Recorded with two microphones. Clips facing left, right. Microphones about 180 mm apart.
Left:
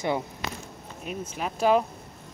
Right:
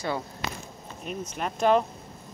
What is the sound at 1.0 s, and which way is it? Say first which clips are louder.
Speech: even; 5° left (ahead or behind).